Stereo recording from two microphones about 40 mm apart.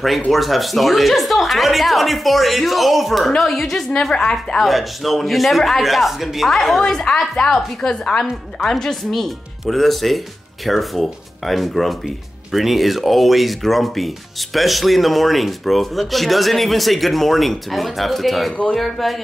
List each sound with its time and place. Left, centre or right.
0.3 s speech: centre
4.2 s a woman's voice: left
4.6 s speech: centre
6.8 s a woman's voice: centre